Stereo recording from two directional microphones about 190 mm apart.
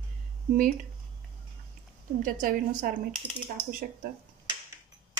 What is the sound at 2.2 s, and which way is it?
A woman's voice, 45° right (ahead or behind).